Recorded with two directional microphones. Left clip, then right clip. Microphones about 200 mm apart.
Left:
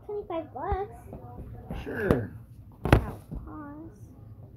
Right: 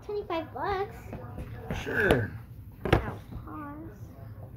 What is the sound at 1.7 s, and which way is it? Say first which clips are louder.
Speech: right 3 dB; 10° right (ahead or behind).